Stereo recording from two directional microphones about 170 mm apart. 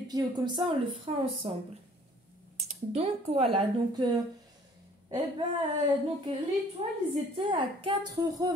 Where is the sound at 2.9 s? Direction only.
35° right (ahead or behind).